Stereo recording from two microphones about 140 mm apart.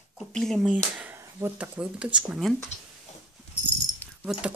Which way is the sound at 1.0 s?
10° right (ahead or behind).